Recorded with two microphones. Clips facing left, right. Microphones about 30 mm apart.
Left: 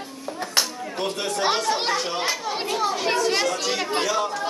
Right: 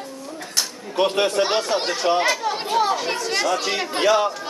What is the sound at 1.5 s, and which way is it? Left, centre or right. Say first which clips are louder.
Speech: right 1 dB; centre.